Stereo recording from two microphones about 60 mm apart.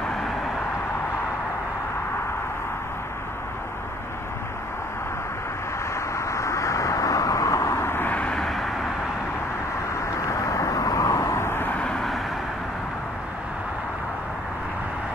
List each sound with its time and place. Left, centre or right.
5.9 s vehicle: left
7.8 s vehicle: left
8.1 s vehicle: left
8.4 s vehicle: centre
10.2 s vehicle: left
11.7 s vehicle: centre